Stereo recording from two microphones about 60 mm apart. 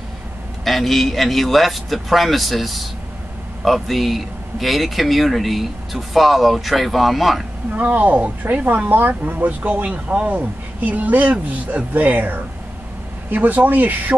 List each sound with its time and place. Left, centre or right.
0.7 s speech: centre
7.7 s speech: right